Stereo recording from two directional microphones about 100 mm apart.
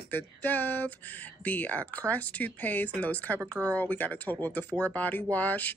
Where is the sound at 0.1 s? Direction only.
20° left (ahead or behind).